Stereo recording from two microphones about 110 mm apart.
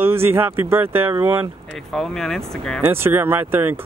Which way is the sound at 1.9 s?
5° left (ahead or behind).